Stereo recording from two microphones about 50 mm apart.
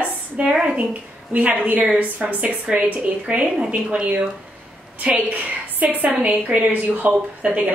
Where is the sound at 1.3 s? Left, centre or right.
Right.